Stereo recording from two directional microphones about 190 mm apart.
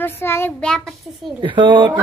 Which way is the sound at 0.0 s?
10° left (ahead or behind).